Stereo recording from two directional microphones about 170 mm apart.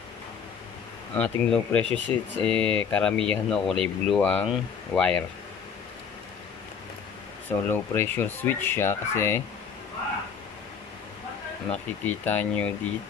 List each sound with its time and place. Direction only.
1.1 s speech: 5° left (ahead or behind)
7.4 s speech: 10° left (ahead or behind)
11.7 s speech: 10° left (ahead or behind)